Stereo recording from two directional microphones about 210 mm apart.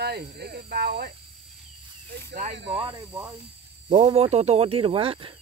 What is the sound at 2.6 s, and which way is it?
Speech, 25° right (ahead or behind).